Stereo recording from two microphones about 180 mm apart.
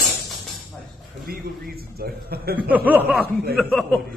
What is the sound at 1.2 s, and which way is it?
A man's voice, 55° right (ahead or behind).